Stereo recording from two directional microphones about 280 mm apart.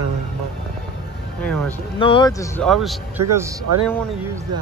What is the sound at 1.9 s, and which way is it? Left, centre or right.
Speech, centre.